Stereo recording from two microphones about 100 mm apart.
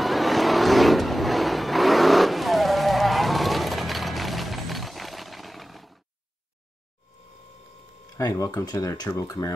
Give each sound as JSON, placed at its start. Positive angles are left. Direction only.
{"t": 0.0, "sound": "vehicle", "side_deg": 0}
{"t": 8.2, "sound": "speech", "side_deg": 40}